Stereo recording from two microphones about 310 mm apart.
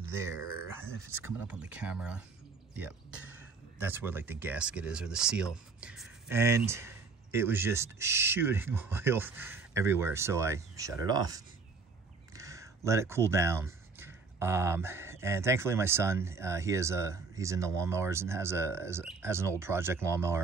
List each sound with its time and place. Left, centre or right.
0.1 s speech: centre